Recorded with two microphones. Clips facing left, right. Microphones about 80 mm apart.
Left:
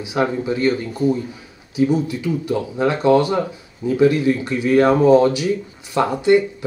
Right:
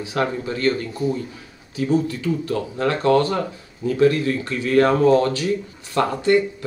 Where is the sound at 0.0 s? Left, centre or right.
Centre.